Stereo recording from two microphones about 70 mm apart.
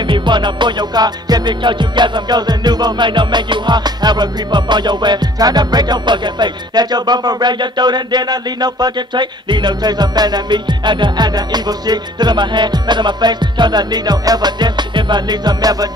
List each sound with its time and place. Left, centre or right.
0.0 s music: right